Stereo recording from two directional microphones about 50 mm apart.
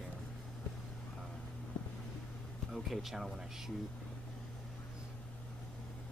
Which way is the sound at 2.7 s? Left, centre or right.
Centre.